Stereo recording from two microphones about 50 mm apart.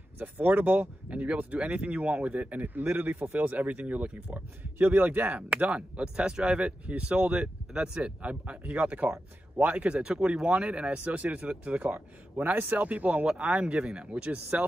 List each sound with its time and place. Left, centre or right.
0.2 s speech: right
1.2 s speech: right
3.3 s speech: right
4.3 s speech: right